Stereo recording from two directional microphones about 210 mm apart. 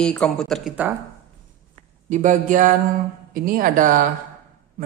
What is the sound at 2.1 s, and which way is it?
A woman's voice, 35° right (ahead or behind).